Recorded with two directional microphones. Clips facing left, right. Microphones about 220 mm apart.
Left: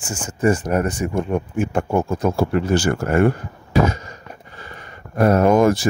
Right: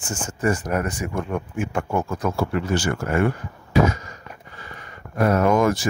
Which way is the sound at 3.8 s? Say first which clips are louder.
Left 1 dB; 30° left (ahead or behind).